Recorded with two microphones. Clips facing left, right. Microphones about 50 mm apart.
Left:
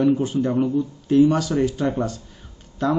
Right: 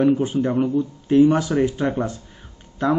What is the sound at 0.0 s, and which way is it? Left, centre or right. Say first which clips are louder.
Speech: right 1 dB; right.